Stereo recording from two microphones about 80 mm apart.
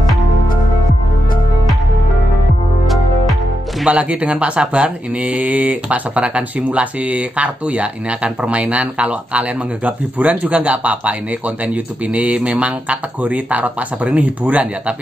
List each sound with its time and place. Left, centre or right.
3.8 s speech: centre